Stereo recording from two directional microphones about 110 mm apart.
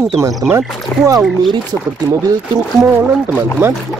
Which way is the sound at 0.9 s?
15° left (ahead or behind).